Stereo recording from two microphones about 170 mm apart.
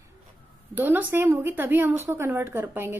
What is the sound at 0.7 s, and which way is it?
A woman's voice, 10° right (ahead or behind).